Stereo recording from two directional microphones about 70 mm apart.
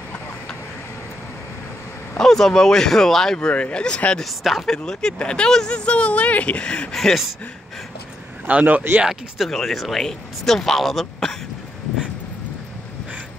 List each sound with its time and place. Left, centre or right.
2.1 s speech: centre
4.2 s speech: centre
4.7 s speech: centre
8.5 s speech: right
9.5 s speech: centre